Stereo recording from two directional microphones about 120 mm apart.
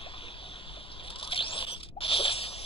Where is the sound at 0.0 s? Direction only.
50° left (ahead or behind).